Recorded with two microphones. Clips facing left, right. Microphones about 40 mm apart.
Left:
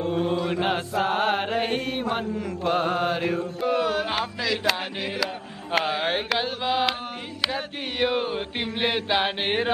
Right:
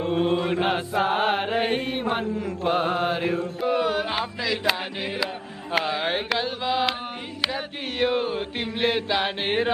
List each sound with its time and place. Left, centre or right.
0.0 s mantra: right
0.5 s chant: centre
1.8 s mantra: centre
5.9 s chant: centre